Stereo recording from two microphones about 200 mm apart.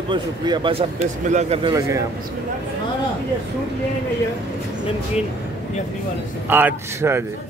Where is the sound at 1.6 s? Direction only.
15° right (ahead or behind).